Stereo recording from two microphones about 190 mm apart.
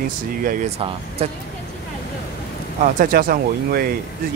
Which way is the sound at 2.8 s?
45° right (ahead or behind).